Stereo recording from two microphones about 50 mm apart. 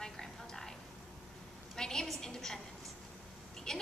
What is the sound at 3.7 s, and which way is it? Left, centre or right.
Speech, centre.